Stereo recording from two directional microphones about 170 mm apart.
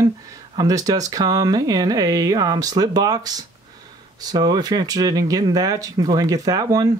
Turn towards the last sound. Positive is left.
turn(degrees=-25)  # may be behind; listen again after turning